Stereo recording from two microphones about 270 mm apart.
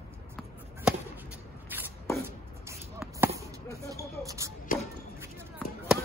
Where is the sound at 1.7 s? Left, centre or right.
Centre.